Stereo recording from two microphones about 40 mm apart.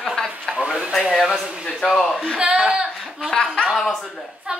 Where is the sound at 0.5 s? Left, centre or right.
Right.